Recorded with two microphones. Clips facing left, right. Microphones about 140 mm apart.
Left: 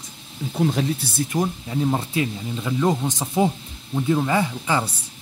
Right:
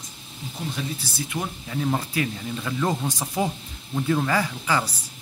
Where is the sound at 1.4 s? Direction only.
20° left (ahead or behind).